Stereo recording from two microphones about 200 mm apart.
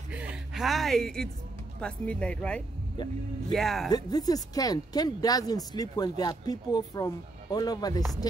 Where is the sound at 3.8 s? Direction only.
20° left (ahead or behind).